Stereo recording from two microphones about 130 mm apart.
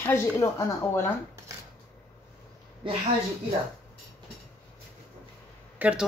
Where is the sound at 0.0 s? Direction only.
20° left (ahead or behind).